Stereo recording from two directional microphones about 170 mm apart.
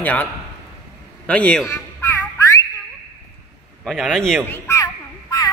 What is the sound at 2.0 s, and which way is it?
Music, 20° left (ahead or behind).